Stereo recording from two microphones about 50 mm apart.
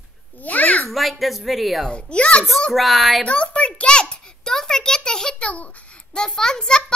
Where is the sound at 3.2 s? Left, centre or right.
Left.